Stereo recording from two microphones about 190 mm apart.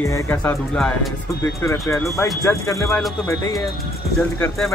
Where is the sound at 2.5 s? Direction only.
15° left (ahead or behind).